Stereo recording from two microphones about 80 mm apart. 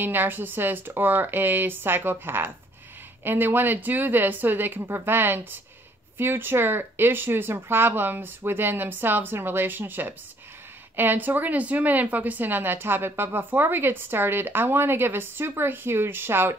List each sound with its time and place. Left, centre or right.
0.0 s speech: right